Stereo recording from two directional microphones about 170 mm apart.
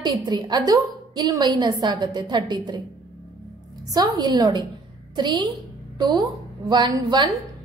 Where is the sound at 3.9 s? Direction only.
25° right (ahead or behind).